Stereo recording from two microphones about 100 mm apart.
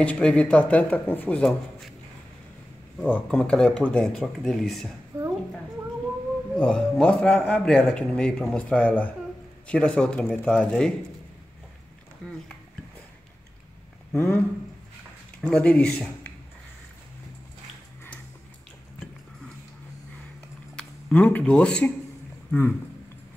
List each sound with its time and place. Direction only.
0.0 s a man's voice: 10° left (ahead or behind)
3.0 s a man's voice: 10° left (ahead or behind)
5.1 s a sound: 35° right (ahead or behind)
6.5 s a man's voice: 5° left (ahead or behind)
14.1 s speech: 20° left (ahead or behind)
15.5 s a man's voice: 10° left (ahead or behind)
20.7 s speech: 15° left (ahead or behind)